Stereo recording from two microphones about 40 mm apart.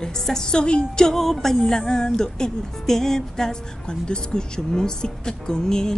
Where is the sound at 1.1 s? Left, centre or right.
Centre.